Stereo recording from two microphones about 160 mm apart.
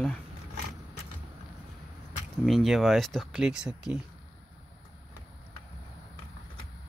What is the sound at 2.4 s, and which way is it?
Speech, centre (ahead or behind).